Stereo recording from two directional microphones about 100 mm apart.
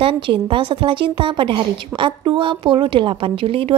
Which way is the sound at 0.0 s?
60° right (ahead or behind).